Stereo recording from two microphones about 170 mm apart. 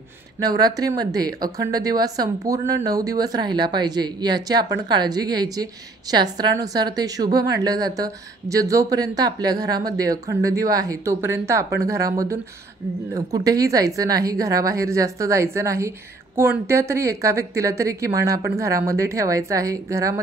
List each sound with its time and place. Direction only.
0.4 s speech: 25° right (ahead or behind)